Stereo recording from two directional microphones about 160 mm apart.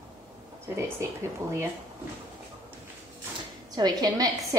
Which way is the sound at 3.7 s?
25° right (ahead or behind).